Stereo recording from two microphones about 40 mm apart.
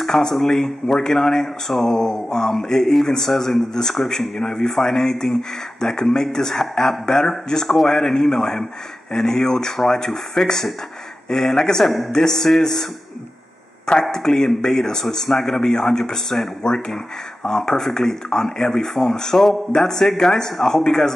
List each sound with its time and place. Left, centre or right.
0.0 s speech: centre
14.1 s speech: centre